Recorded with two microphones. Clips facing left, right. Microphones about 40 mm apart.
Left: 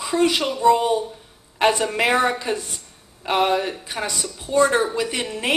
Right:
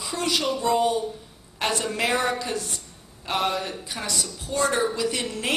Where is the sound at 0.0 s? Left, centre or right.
Left.